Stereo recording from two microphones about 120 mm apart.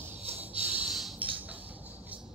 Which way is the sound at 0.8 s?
Centre (ahead or behind).